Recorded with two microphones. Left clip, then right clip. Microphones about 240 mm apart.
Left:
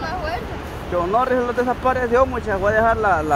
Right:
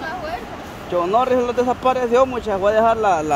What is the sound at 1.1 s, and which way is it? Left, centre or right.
Speech, centre.